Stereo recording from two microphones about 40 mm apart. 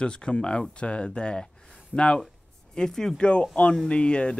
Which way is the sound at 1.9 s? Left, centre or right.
Centre.